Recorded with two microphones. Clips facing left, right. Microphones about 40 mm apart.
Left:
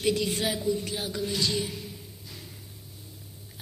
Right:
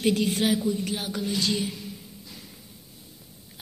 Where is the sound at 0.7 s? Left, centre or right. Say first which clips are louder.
Right 1 dB; right.